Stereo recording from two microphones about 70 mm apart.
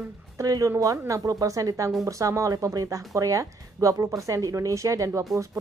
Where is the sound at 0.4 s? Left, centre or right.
Right.